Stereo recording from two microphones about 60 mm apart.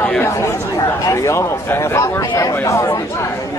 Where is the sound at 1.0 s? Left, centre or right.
Left.